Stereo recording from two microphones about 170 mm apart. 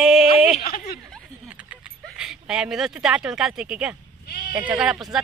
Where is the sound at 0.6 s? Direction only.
60° left (ahead or behind).